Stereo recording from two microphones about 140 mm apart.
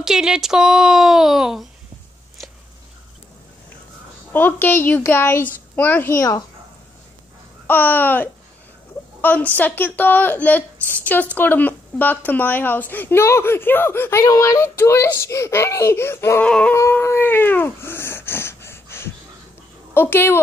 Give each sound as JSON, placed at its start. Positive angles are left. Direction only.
{"t": 0.0, "sound": "speech", "side_deg": -5}
{"t": 4.3, "sound": "a woman's voice", "side_deg": 15}
{"t": 7.6, "sound": "a woman's voice", "side_deg": 15}
{"t": 16.4, "sound": "a woman's voice", "side_deg": 10}
{"t": 16.7, "sound": "dog", "side_deg": 20}
{"t": 19.9, "sound": "speech", "side_deg": 15}